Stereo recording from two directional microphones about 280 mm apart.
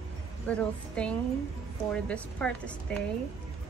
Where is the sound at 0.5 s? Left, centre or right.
Centre.